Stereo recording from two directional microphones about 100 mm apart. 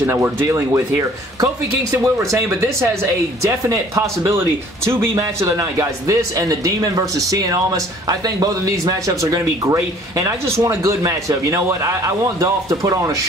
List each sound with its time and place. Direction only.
0.0 s a man's voice: 25° right (ahead or behind)